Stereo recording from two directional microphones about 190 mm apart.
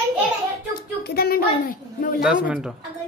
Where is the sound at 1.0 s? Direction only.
55° left (ahead or behind).